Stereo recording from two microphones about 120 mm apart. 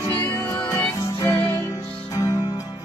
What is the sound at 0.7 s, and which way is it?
Music, 30° left (ahead or behind).